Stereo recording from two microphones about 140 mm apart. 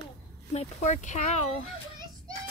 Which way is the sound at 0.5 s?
60° left (ahead or behind).